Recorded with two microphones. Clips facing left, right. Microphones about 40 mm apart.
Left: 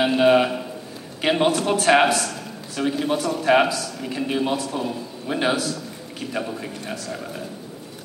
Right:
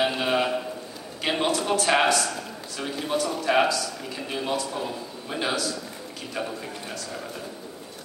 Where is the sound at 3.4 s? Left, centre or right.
Centre.